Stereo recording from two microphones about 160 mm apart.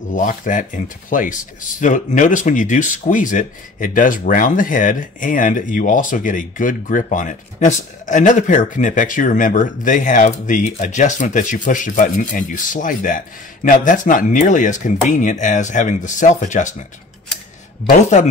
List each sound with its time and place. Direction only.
0.1 s speech: 55° left (ahead or behind)
18.1 s speech: 45° left (ahead or behind)